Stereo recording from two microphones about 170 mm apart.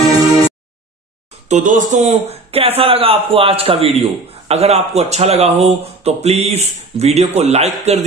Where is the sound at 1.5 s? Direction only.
50° right (ahead or behind).